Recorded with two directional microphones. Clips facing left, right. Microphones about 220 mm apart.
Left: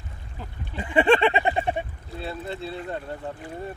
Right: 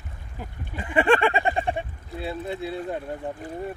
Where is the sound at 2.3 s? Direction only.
15° right (ahead or behind).